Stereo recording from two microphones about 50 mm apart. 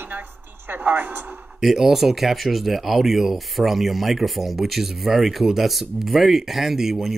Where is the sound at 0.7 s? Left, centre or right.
Right.